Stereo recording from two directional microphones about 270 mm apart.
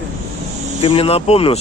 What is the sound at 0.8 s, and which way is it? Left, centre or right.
Speech, left.